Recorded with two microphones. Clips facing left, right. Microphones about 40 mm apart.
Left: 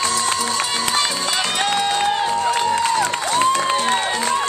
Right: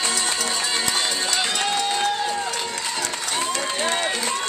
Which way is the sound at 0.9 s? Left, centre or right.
Left.